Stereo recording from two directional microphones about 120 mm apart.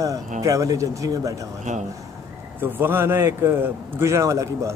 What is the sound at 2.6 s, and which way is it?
Speech, 20° right (ahead or behind).